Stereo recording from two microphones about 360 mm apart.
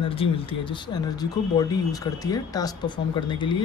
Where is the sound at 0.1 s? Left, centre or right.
Centre.